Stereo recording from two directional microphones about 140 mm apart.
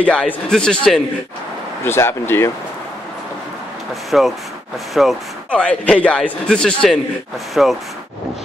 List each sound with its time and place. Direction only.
0.0 s a man's voice: 10° left (ahead or behind)
1.9 s a man's voice: 15° left (ahead or behind)
4.1 s a man's voice: 5° right (ahead or behind)